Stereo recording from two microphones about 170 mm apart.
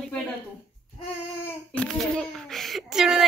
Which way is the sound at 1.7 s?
5° left (ahead or behind).